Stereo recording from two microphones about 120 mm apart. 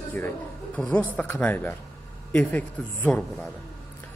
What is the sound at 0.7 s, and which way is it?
Speech, 10° left (ahead or behind).